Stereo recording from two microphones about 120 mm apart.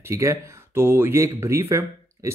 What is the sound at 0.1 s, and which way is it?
Speech, 25° right (ahead or behind).